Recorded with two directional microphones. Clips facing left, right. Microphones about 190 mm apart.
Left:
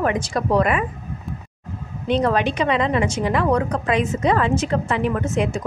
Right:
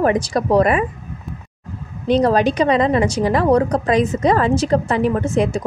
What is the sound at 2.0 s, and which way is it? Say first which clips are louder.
A woman's voice: right 4 dB; 35° right (ahead or behind).